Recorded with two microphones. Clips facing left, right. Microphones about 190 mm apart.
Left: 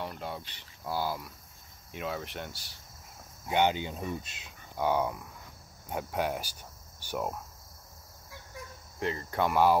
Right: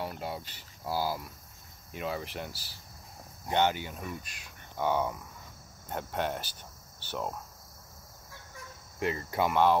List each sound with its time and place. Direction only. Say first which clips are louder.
0.0 s a sound: right 1 dB; 5° right (ahead or behind)
0.5 s speech: right 1 dB; 5° right (ahead or behind)
3.4 s speech: left 1 dB; 15° left (ahead or behind)
4.7 s dog: left 1 dB; 10° left (ahead or behind)
5.9 s speech: left 1 dB; 5° left (ahead or behind)
9.0 s cricket: right 1 dB; 10° right (ahead or behind)
9.5 s dog: left 1 dB; 5° left (ahead or behind)